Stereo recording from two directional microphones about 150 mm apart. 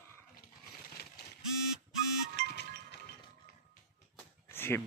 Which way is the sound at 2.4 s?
90° left.